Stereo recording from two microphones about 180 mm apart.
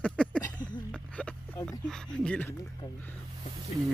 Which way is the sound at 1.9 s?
5° left (ahead or behind).